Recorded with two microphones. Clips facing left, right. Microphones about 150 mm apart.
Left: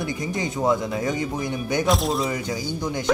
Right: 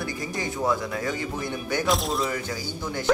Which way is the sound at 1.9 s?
Centre (ahead or behind).